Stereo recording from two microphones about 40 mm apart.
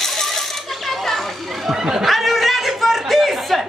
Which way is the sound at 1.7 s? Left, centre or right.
Centre.